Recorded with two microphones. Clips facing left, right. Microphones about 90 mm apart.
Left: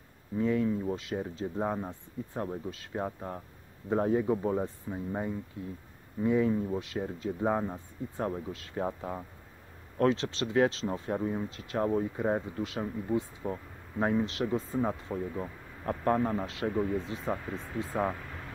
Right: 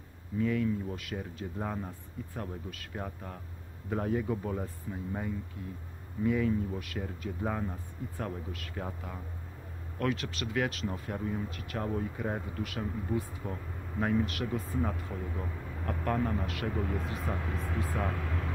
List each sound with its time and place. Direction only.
0.4 s speech: 30° left (ahead or behind)